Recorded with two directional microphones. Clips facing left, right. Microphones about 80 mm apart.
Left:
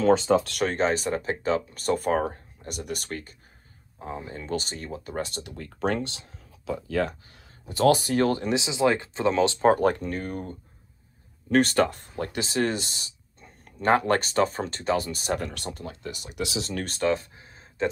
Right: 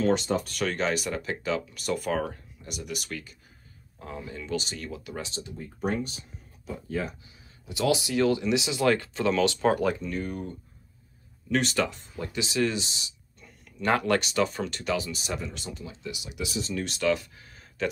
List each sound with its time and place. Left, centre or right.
0.3 s speech: left
0.7 s speech: left
4.0 s speech: left
7.6 s speech: left
8.5 s speech: left
15.4 s speech: left
16.4 s speech: left
16.7 s speech: left